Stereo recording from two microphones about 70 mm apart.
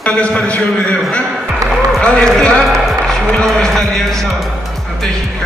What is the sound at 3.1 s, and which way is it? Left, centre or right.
Music, centre.